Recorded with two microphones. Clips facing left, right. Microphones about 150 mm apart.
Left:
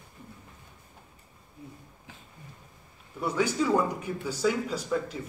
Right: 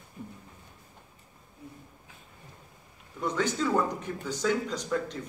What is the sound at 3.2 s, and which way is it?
Speech, 10° left (ahead or behind).